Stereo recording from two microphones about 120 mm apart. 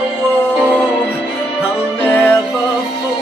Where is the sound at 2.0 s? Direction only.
15° left (ahead or behind).